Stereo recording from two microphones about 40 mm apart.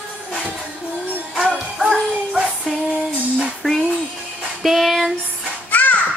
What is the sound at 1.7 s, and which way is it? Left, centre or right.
Dog, centre.